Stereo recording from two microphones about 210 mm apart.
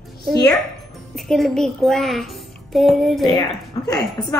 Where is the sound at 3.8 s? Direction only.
20° left (ahead or behind).